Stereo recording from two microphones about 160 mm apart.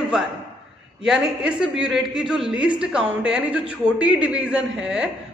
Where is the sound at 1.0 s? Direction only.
5° right (ahead or behind).